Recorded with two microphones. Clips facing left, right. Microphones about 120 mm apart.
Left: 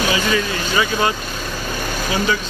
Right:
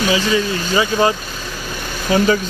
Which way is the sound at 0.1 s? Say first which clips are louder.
Right 2 dB; 25° right (ahead or behind).